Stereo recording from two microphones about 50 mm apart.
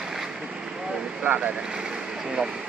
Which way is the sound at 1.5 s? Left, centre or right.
Centre.